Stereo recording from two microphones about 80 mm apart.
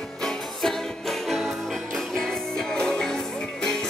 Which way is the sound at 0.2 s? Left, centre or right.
Centre.